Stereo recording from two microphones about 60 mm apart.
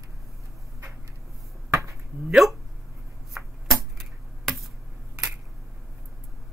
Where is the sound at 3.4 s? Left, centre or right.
Right.